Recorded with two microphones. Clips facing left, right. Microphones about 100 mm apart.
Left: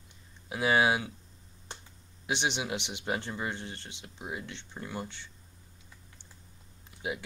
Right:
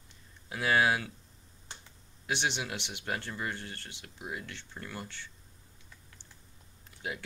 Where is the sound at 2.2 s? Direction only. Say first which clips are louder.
Left 2 dB; 20° left (ahead or behind).